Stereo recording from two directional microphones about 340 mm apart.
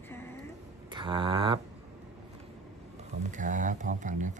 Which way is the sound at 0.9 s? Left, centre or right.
Centre.